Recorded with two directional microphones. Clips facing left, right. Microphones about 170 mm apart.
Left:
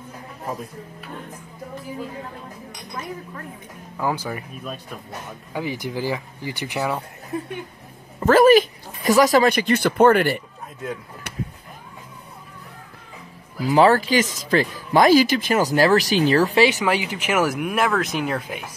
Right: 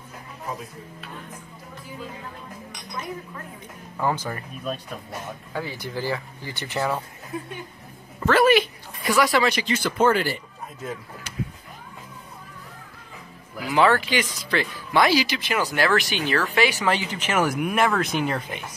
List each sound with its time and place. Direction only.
3.9 s speech: 5° left (ahead or behind)
8.3 s speech: 40° left (ahead or behind); by 10.4 s 60° left (ahead or behind)
11.3 s a sound: 65° left (ahead or behind)
13.6 s speech: 35° left (ahead or behind)
16.8 s speech: 10° left (ahead or behind)